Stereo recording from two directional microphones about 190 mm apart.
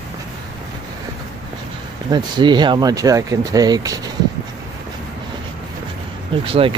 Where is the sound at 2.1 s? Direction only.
25° right (ahead or behind).